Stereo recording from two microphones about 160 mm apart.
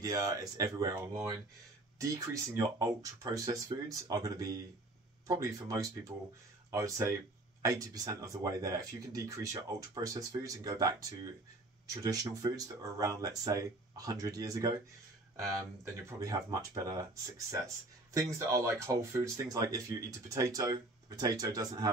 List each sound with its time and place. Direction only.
0.0 s speech: 20° right (ahead or behind)
16.1 s speech: 20° right (ahead or behind)